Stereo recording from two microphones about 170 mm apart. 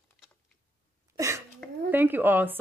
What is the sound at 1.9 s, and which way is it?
Speech, 10° right (ahead or behind).